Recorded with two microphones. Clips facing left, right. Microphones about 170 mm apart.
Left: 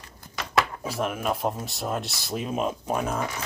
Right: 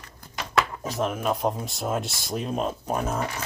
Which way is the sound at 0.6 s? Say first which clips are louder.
Right 1 dB; 10° left (ahead or behind).